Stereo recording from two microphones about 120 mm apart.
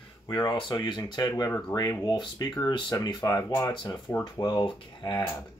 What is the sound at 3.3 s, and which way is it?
Speech, 25° left (ahead or behind).